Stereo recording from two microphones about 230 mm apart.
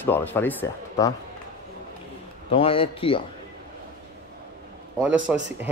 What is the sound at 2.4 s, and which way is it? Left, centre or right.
Speech, left.